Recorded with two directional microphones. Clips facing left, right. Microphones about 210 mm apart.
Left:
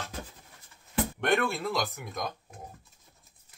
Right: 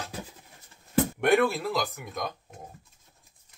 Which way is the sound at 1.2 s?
10° right (ahead or behind).